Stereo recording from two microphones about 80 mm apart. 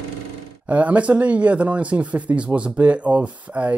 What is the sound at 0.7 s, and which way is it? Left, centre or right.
Speech, centre.